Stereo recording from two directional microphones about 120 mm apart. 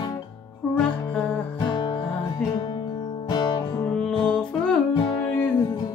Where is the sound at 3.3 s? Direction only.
40° left (ahead or behind).